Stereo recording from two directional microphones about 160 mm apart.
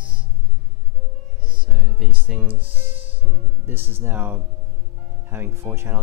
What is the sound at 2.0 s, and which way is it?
Music, 10° right (ahead or behind).